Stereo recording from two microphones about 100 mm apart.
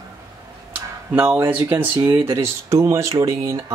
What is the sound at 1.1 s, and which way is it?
Speech, 20° right (ahead or behind).